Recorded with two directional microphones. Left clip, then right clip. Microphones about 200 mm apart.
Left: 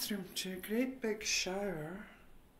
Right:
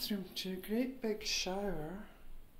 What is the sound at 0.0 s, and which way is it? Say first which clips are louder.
Speech: even; centre (ahead or behind).